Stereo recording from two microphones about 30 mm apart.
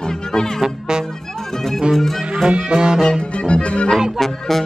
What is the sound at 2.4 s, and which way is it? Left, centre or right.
Music, right.